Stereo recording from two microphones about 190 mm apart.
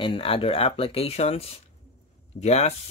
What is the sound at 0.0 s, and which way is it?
Speech, 30° left (ahead or behind).